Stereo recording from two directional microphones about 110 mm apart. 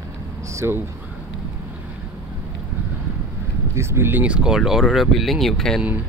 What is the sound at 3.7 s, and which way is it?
Speech, 25° right (ahead or behind).